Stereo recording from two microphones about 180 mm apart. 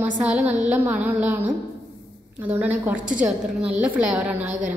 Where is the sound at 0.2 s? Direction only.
10° right (ahead or behind).